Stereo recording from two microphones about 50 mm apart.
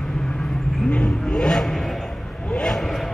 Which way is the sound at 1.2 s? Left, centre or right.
Centre.